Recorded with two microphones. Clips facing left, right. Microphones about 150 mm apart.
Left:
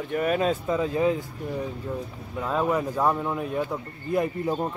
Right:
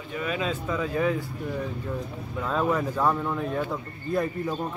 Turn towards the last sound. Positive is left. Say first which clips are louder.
# left 2 dB
turn(degrees=20)  # may be behind; listen again after turning